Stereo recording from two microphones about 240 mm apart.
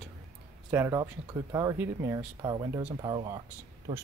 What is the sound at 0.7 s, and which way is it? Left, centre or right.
Speech, centre.